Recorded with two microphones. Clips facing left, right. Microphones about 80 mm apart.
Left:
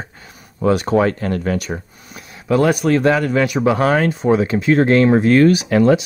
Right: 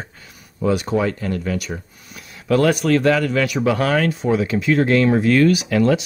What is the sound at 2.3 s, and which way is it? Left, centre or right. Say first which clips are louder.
Speech: left 1 dB; centre.